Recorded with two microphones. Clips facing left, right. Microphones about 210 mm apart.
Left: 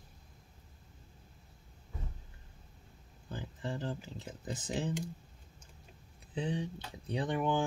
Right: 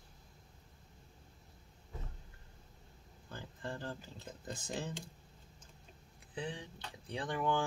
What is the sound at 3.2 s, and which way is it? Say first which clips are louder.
Speech: left 4 dB; 15° left (ahead or behind).